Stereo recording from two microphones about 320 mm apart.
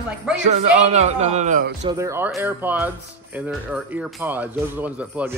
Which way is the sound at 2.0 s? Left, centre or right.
Centre.